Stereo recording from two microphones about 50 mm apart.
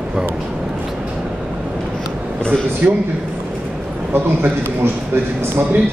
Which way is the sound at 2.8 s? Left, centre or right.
Right.